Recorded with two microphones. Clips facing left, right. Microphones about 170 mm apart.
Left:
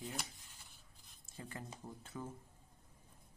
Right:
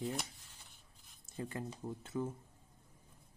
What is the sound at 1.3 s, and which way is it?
Speech, 25° right (ahead or behind).